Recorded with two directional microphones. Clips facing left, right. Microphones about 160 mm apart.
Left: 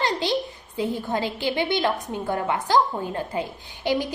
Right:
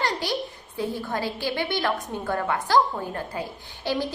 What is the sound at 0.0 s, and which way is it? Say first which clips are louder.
A woman's voice: left 3 dB; 20° left (ahead or behind).